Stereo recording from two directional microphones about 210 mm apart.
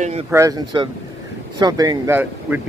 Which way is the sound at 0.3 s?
15° right (ahead or behind).